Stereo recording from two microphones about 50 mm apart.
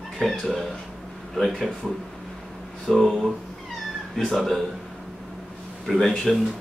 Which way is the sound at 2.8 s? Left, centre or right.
Centre.